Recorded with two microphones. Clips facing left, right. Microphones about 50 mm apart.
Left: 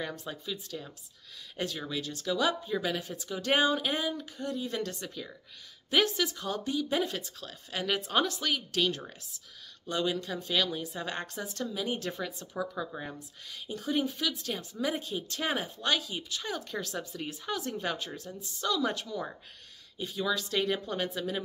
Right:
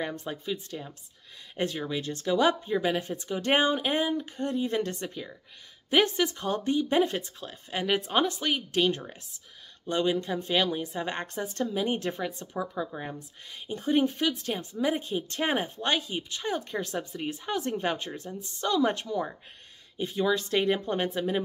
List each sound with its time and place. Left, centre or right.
0.0 s speech: right
0.3 s speech: right
7.3 s speech: right
12.5 s speech: centre
13.5 s speech: right